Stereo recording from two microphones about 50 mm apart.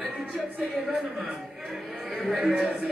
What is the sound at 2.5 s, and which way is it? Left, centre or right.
Speech, centre.